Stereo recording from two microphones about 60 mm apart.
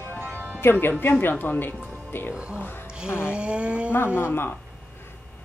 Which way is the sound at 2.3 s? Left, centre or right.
Centre.